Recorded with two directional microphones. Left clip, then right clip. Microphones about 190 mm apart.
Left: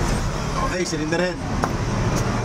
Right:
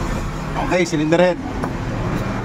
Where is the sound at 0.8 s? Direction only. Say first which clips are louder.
Right 7 dB; 55° right (ahead or behind).